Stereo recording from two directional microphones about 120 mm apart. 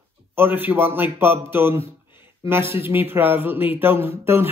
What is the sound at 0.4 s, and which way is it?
A man's voice, 15° right (ahead or behind).